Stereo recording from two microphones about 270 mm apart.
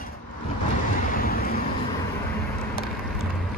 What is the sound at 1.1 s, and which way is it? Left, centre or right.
Vehicle, left.